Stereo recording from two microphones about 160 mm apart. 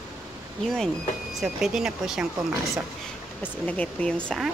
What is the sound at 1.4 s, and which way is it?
Speech, 5° right (ahead or behind).